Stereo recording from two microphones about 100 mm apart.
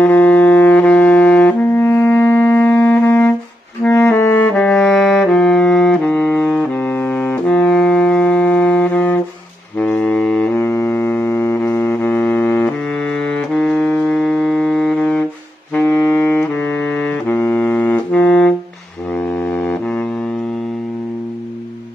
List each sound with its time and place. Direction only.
0.0 s music: 15° left (ahead or behind)
3.8 s clarinet: 15° left (ahead or behind)
4.6 s saxophone: 10° left (ahead or behind)
6.7 s music: 20° left (ahead or behind)
10.5 s music: 25° left (ahead or behind); by 15.2 s 5° left (ahead or behind)
15.8 s saxophone: 15° left (ahead or behind)
19.1 s foghorn: 15° left (ahead or behind)